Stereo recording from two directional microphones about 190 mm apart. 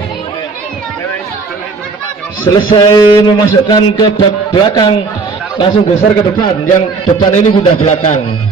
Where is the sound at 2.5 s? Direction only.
25° left (ahead or behind).